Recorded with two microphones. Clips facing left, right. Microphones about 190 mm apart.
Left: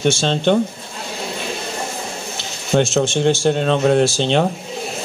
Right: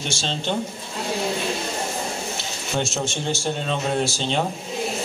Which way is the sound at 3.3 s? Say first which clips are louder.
Left 9 dB; 70° left (ahead or behind).